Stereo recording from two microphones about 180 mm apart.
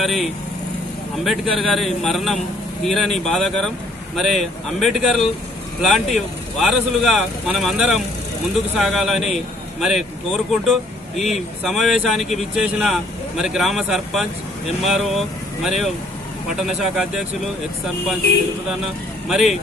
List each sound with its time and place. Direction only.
0.0 s a man's voice: centre (ahead or behind)
19.2 s speech: centre (ahead or behind)